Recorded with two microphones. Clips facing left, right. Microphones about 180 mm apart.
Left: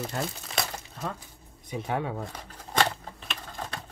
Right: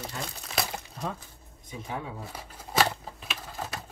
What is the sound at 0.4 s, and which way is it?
Crumpling, centre (ahead or behind).